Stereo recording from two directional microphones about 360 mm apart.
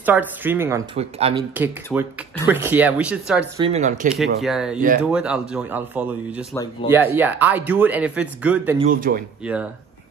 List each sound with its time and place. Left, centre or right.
0.0 s speech: centre
1.5 s speech: centre
3.6 s speech: centre
4.4 s speech: centre
6.5 s speech: centre
6.9 s speech: centre
8.7 s speech: right
9.4 s speech: centre